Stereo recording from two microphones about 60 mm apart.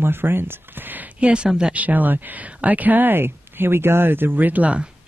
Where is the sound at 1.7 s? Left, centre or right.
Right.